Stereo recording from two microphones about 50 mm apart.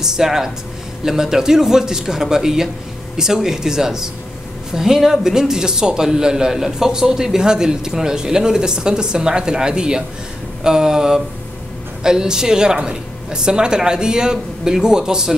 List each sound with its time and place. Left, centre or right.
0.0 s speech: centre